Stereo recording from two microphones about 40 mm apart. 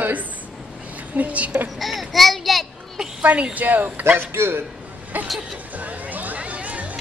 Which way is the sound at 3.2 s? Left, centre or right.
Right.